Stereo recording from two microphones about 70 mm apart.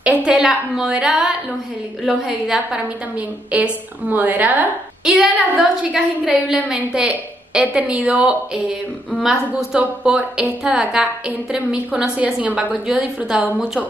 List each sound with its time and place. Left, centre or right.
0.0 s a woman's voice: centre
3.5 s a woman's voice: right
5.0 s a woman's voice: centre
9.2 s a woman's voice: centre
9.8 s a woman's voice: centre